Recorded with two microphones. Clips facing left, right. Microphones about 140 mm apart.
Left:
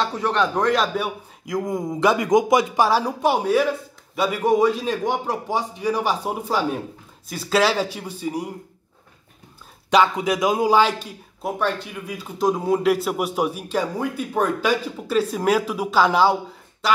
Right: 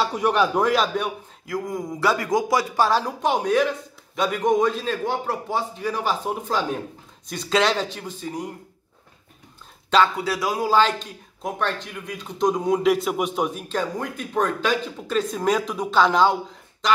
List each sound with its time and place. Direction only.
0.0 s a man's voice: 10° right (ahead or behind)
1.5 s speech: 20° left (ahead or behind)
9.8 s speech: 15° left (ahead or behind)